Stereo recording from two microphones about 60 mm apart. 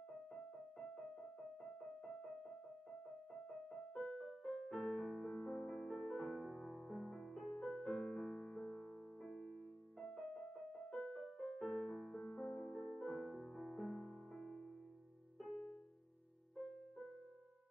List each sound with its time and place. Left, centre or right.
0.3 s keyboard: centre
3.4 s music: centre
4.3 s music: centre
5.0 s music: centre
5.3 s music: left
12.4 s music: left
12.7 s music: centre
13.3 s music: centre